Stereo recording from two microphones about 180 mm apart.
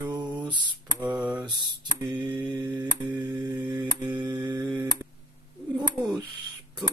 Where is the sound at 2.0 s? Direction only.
25° right (ahead or behind).